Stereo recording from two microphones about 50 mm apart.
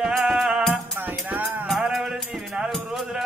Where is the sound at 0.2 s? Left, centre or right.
Centre.